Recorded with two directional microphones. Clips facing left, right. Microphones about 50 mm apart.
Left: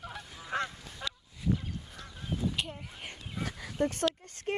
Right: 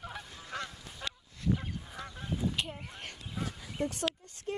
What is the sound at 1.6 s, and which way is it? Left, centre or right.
Goose, right.